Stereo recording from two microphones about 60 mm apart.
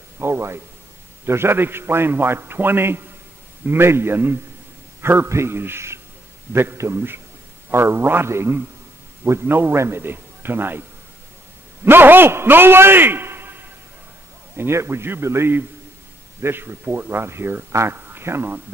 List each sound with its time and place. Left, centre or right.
0.2 s a man's voice: right
14.6 s a man's voice: right